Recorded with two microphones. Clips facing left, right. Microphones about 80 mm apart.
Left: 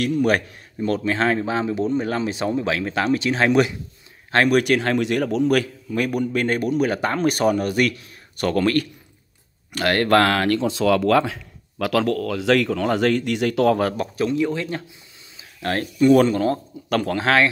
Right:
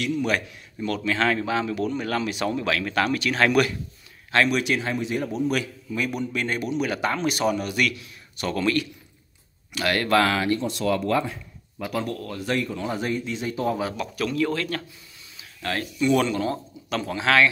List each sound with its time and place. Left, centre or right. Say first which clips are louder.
0.0 s speech: left 5 dB; left
4.3 s speech: left 5 dB; left
5.5 s a man's voice: left 6 dB; left
10.5 s speech: left 5 dB; left
13.9 s speech: left 4 dB; left
15.3 s speech: left 4 dB; left